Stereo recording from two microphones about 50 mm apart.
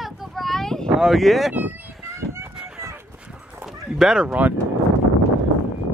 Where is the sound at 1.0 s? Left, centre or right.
Centre.